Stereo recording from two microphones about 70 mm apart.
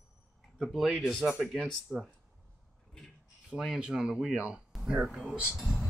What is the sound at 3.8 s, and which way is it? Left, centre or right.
Speech, centre.